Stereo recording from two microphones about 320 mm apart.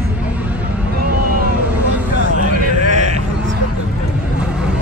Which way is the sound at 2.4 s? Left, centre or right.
Right.